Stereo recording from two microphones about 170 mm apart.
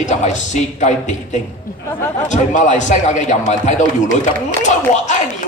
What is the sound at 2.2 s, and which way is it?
A man's voice, 45° left (ahead or behind).